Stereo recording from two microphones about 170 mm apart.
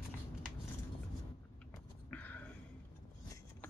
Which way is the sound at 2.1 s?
10° left (ahead or behind).